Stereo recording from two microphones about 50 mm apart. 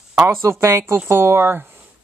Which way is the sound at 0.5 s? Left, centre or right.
Right.